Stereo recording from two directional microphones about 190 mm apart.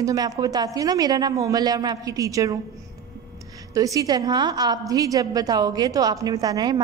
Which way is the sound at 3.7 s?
20° right (ahead or behind).